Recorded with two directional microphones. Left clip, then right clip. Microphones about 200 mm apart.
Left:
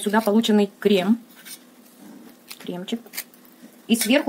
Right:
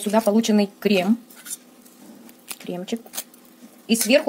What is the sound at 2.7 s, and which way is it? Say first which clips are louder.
Speech: right 1 dB; 25° right (ahead or behind).